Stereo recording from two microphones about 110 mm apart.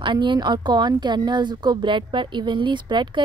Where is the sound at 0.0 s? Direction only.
45° right (ahead or behind).